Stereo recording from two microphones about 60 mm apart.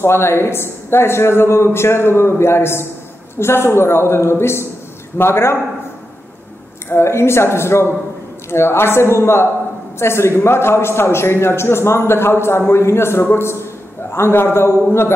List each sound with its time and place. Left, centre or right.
0.0 s a man's voice: left
6.9 s a man's voice: left